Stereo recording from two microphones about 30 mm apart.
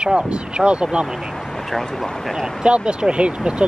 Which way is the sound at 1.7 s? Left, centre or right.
Centre.